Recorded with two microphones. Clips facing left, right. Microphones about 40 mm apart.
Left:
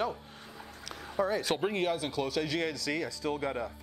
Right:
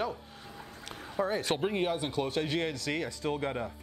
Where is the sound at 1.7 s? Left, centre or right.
Left.